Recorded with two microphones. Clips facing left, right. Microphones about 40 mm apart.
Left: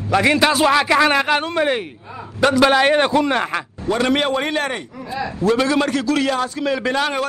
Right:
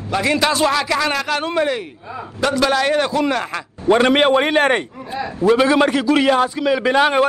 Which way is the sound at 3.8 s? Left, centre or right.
Right.